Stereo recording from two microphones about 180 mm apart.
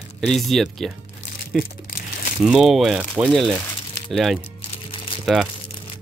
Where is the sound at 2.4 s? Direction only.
5° right (ahead or behind).